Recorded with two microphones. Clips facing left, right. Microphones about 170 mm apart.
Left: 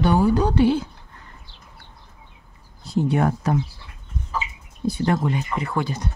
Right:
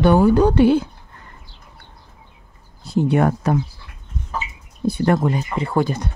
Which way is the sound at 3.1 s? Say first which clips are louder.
Right 4 dB; 65° right (ahead or behind).